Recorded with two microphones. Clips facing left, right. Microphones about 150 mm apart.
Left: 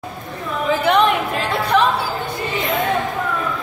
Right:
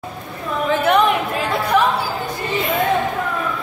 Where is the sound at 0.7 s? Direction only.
5° right (ahead or behind).